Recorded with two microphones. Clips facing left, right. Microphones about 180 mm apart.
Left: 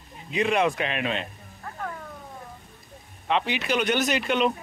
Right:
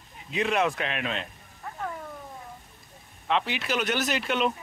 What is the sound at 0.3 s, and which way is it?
Speech, centre (ahead or behind).